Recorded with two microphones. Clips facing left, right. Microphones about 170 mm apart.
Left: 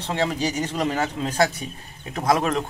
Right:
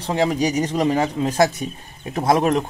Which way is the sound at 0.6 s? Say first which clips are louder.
Right 5 dB; 35° right (ahead or behind).